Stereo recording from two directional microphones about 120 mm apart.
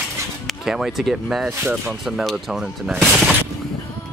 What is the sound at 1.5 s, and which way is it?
Speech, 20° right (ahead or behind).